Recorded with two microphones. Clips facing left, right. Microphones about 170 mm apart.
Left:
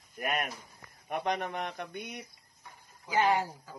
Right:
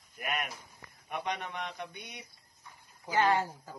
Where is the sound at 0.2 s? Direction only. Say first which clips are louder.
Left 3 dB; 45° left (ahead or behind).